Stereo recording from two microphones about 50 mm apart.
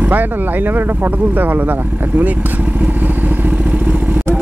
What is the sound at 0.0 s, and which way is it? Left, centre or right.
Speech, right.